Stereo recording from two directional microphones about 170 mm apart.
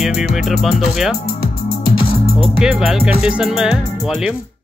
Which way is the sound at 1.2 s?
60° left (ahead or behind).